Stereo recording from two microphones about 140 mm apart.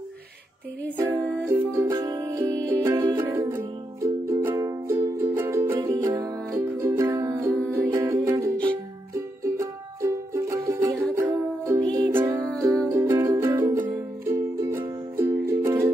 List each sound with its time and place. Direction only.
0.9 s music: 15° right (ahead or behind)
1.9 s music: 30° right (ahead or behind)
3.3 s music: 15° right (ahead or behind)
11.8 s music: 30° right (ahead or behind)
12.1 s music: 15° right (ahead or behind)
12.4 s music: 5° left (ahead or behind)
12.9 s music: 15° right (ahead or behind)